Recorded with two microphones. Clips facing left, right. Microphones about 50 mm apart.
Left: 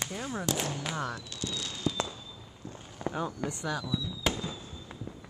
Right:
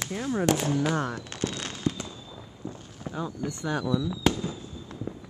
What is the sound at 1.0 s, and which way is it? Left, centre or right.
Fireworks, right.